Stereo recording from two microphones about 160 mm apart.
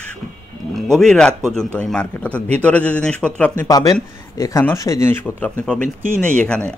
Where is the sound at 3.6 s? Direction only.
25° left (ahead or behind).